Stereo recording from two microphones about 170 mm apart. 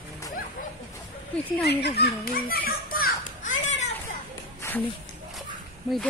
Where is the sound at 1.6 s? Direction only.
75° left (ahead or behind); by 3.9 s 45° left (ahead or behind).